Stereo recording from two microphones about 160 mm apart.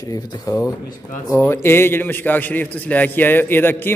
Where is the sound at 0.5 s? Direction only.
20° left (ahead or behind).